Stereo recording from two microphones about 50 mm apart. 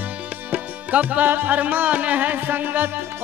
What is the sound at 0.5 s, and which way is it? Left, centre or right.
Music, right.